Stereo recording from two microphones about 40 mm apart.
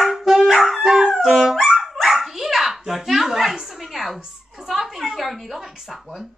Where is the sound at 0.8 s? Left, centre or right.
Centre.